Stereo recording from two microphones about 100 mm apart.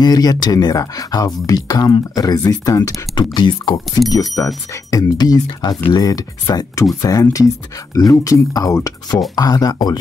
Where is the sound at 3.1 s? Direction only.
50° left (ahead or behind).